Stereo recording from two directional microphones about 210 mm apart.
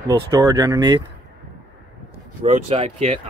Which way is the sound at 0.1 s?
20° right (ahead or behind).